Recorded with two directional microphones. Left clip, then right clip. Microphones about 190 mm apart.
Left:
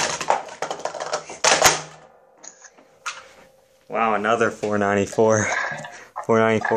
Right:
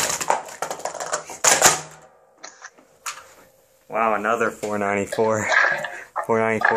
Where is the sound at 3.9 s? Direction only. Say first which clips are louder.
Left 1 dB; 30° left (ahead or behind).